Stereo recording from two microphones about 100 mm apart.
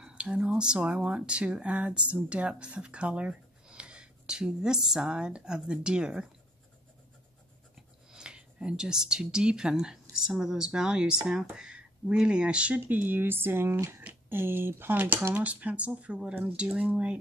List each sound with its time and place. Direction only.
0.0 s speech: 10° right (ahead or behind)
7.7 s speech: 5° right (ahead or behind)